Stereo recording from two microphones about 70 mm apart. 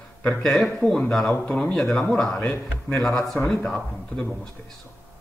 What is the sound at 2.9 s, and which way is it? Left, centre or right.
Speech, centre.